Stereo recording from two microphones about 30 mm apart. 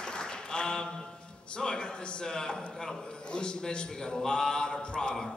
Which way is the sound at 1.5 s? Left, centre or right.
Left.